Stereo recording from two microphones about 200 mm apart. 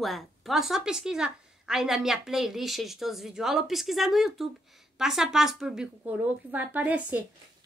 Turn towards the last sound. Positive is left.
turn(degrees=-5)  # may be behind; listen again after turning